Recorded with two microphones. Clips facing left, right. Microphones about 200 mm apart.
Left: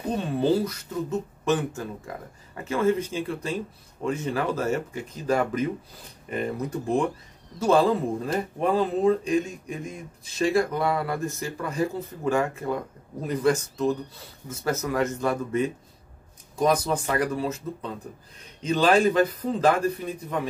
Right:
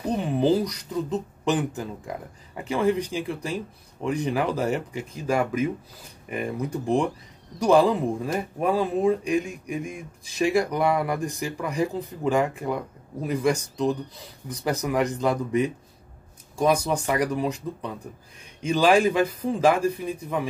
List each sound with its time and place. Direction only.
0.2 s speech: 15° right (ahead or behind)